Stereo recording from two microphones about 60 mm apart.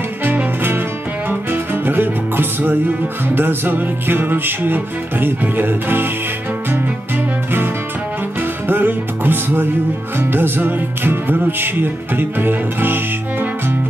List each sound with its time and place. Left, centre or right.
0.2 s music: right
8.4 s music: right